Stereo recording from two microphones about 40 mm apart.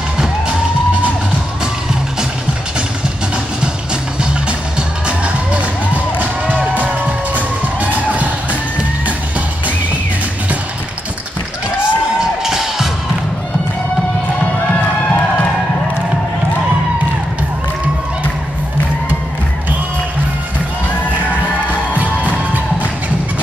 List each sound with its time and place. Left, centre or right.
4.2 s music: right
11.8 s crowd: centre
21.9 s music: right